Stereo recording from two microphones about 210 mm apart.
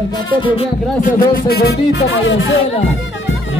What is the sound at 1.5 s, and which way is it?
Music, 50° left (ahead or behind).